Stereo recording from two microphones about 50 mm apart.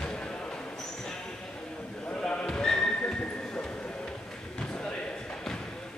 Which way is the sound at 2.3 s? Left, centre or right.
Centre.